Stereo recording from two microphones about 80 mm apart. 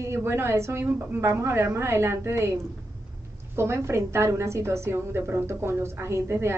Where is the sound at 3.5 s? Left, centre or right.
Right.